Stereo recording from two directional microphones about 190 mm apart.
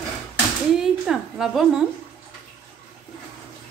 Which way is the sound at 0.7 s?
Centre (ahead or behind).